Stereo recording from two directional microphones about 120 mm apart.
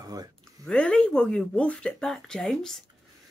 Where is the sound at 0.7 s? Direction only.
10° left (ahead or behind).